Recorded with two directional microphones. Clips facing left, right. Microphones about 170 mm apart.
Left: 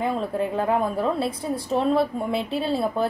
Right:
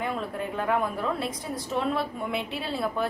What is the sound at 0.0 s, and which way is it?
A woman's voice, 30° left (ahead or behind).